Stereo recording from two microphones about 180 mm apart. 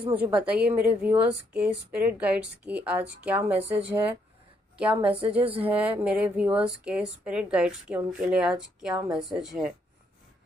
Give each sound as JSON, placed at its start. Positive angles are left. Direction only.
{"t": 0.1, "sound": "a woman's voice", "side_deg": -5}